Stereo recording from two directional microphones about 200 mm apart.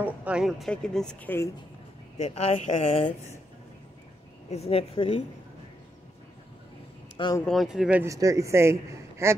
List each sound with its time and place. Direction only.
0.0 s speech: 5° right (ahead or behind); by 1.5 s 10° left (ahead or behind)
2.2 s a woman's voice: 30° left (ahead or behind)
4.5 s speech: 30° left (ahead or behind)
7.2 s speech: 20° left (ahead or behind)
7.4 s speech: centre (ahead or behind)